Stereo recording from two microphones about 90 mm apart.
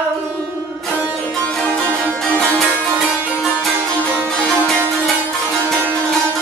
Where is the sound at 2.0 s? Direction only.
15° left (ahead or behind).